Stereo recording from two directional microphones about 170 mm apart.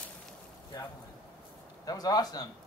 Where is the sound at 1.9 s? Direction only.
20° left (ahead or behind).